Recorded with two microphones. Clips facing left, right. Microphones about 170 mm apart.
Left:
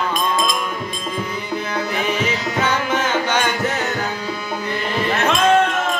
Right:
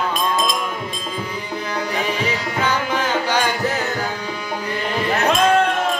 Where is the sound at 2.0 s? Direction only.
30° right (ahead or behind).